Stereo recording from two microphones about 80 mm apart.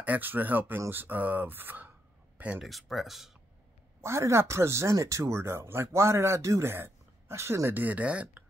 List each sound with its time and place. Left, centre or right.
0.0 s speech: right
2.3 s a sound: centre
2.6 s speech: centre
4.0 s speech: right
7.8 s speech: centre